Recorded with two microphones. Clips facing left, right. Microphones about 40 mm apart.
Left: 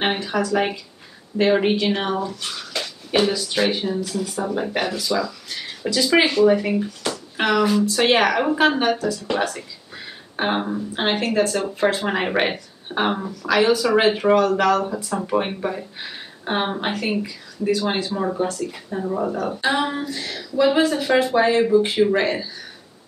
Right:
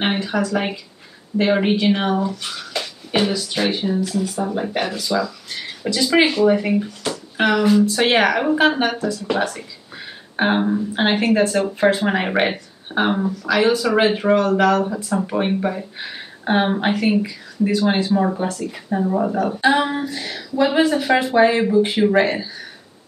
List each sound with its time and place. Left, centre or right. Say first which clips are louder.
0.0 s speech: right 1 dB; centre